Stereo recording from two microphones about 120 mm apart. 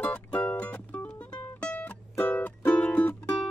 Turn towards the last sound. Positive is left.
turn(degrees=5)  # may be behind; listen again after turning